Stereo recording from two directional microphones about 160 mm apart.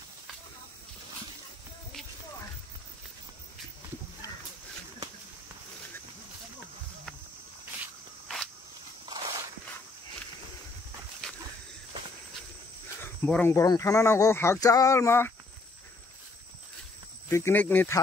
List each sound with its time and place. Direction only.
13.0 s speech: 10° left (ahead or behind)
17.3 s speech: 15° left (ahead or behind)